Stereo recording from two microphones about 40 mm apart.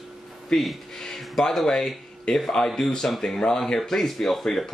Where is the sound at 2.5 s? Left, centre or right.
Centre.